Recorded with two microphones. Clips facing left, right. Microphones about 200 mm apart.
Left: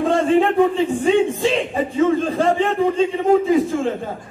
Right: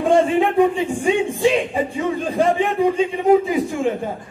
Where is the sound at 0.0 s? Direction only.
15° right (ahead or behind).